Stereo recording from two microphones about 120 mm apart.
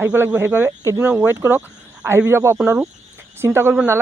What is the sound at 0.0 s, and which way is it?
Speech, 15° right (ahead or behind).